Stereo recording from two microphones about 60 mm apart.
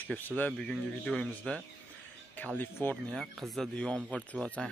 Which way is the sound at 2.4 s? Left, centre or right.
Left.